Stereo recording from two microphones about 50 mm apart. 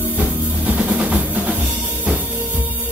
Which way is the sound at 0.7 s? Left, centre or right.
Right.